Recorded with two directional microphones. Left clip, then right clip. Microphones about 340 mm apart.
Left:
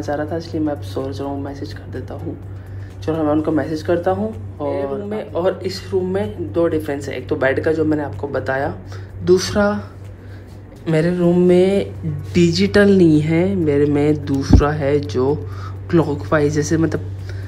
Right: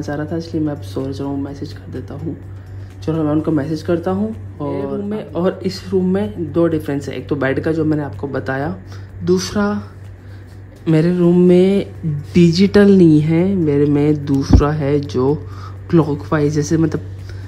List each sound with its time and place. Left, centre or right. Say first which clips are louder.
0.0 s a woman's voice: left 1 dB; right
11.1 s speech: right 1 dB; right